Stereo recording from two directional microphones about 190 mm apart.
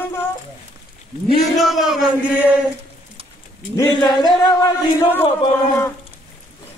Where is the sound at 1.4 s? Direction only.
Centre (ahead or behind).